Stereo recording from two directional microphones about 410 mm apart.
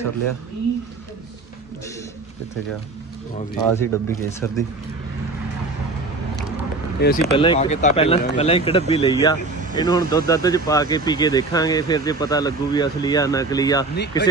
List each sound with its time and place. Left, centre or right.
3.3 s speech: centre
7.0 s speech: left